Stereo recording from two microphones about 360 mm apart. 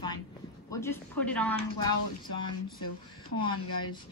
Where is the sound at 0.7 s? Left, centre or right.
Centre.